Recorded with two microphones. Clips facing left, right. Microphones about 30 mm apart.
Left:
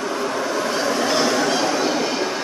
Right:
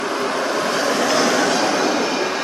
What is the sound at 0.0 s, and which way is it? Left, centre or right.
Vehicle, right.